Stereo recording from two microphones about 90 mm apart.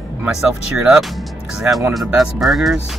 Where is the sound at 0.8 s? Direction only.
5° right (ahead or behind).